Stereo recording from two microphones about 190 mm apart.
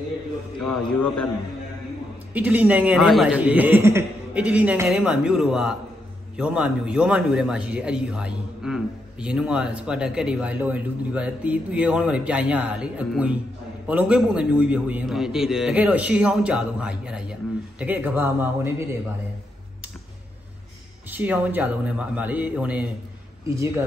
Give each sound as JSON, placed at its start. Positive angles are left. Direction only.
{"t": 0.6, "sound": "a man's voice", "side_deg": 0}
{"t": 2.3, "sound": "a man's voice", "side_deg": -10}
{"t": 21.1, "sound": "a man's voice", "side_deg": -10}